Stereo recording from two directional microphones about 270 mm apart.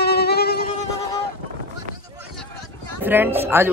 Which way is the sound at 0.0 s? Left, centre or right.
Left.